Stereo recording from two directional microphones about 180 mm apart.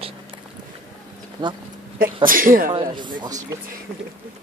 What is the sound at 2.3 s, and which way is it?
Speech, 50° right (ahead or behind).